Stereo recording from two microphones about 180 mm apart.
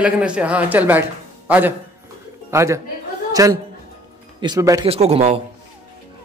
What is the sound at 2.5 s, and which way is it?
A man's voice, 15° right (ahead or behind).